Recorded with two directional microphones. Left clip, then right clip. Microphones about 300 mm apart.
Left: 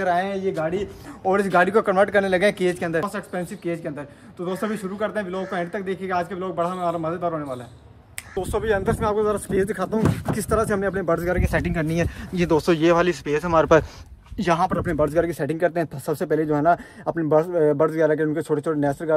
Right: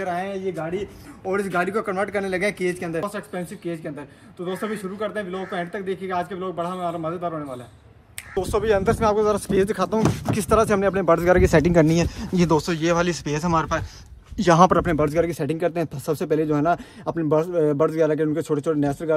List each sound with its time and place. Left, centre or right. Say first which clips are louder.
0.0 s speech: left 4 dB; centre
2.2 s speech: left 4 dB; left
2.7 s a man's voice: left 3 dB; centre